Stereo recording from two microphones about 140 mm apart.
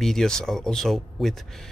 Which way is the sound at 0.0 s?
5° left (ahead or behind).